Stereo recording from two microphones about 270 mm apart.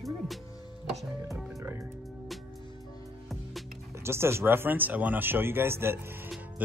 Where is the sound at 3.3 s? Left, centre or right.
Centre.